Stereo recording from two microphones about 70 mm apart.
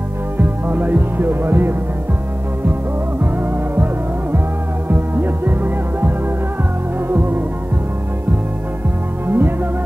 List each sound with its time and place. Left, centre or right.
0.4 s music: right
3.2 s music: right
9.3 s music: right